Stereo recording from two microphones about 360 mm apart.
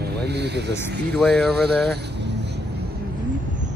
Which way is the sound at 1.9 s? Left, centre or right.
Right.